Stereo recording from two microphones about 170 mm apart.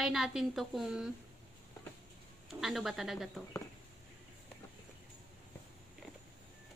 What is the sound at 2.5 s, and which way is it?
Speech, centre (ahead or behind).